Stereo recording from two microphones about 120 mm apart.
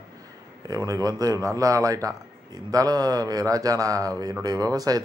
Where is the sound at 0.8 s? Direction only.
30° right (ahead or behind).